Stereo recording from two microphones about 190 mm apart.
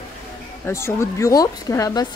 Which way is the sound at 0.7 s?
15° left (ahead or behind).